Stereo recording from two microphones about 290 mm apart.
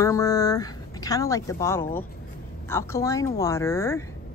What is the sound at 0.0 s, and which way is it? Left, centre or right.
A woman's voice, centre.